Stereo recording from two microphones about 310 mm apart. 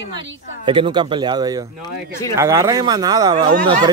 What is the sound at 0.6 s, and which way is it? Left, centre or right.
A man's voice, centre.